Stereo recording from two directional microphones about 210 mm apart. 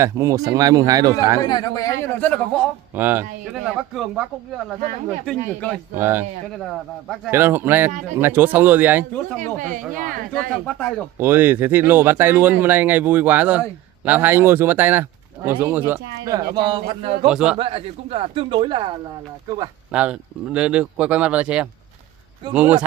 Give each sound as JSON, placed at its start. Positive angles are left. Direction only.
{"t": 0.0, "sound": "speech", "side_deg": -15}
{"t": 1.4, "sound": "a man's voice", "side_deg": 20}
{"t": 2.9, "sound": "speech", "side_deg": -10}
{"t": 5.9, "sound": "speech", "side_deg": -10}
{"t": 6.6, "sound": "speech", "side_deg": 0}
{"t": 7.2, "sound": "speech", "side_deg": -10}
{"t": 9.6, "sound": "speech", "side_deg": -40}
{"t": 10.7, "sound": "speech", "side_deg": 5}
{"t": 11.1, "sound": "speech", "side_deg": -10}
{"t": 16.5, "sound": "a man's voice", "side_deg": -20}
{"t": 17.3, "sound": "speech", "side_deg": -5}
{"t": 17.6, "sound": "a man's voice", "side_deg": -25}
{"t": 19.9, "sound": "speech", "side_deg": -5}